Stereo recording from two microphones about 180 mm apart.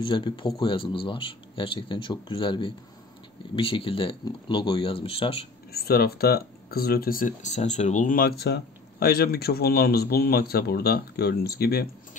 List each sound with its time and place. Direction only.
0.0 s speech: 25° left (ahead or behind)
5.7 s speech: 60° left (ahead or behind)